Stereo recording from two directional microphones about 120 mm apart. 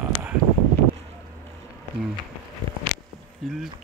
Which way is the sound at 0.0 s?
10° right (ahead or behind).